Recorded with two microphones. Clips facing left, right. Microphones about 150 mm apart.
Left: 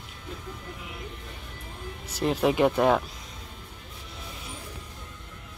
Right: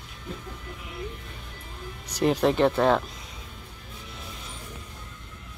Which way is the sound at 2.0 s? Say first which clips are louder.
Right 2 dB; 5° left (ahead or behind).